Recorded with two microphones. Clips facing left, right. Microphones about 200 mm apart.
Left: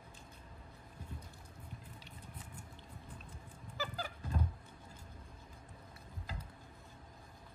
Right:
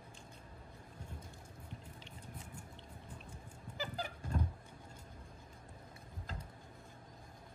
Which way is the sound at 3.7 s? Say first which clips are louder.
Even; 20° right (ahead or behind).